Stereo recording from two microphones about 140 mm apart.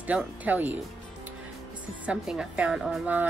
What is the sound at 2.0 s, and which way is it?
A woman's voice, 5° right (ahead or behind).